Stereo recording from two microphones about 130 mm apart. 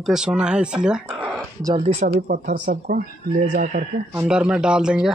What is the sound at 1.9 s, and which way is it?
Speech, 75° right (ahead or behind).